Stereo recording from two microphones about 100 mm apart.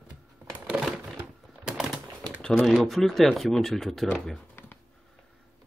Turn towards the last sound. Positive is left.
turn(degrees=20)  # may be behind; listen again after turning